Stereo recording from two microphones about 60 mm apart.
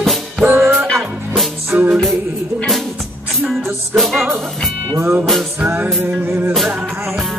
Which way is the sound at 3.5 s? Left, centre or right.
Centre.